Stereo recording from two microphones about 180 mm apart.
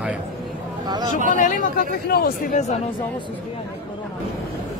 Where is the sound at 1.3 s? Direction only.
45° left (ahead or behind).